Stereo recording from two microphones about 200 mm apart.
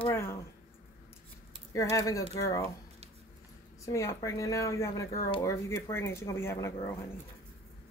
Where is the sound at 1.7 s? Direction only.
15° left (ahead or behind).